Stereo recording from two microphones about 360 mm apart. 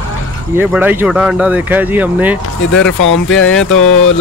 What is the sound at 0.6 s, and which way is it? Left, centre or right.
Speech, centre.